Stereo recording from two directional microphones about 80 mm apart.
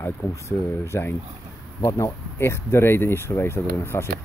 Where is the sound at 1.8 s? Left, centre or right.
Left.